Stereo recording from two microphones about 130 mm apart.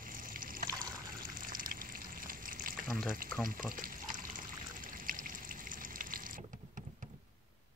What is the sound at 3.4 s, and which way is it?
Pour, 90° right.